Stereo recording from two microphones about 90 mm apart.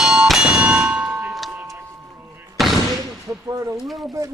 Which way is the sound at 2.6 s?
Centre (ahead or behind).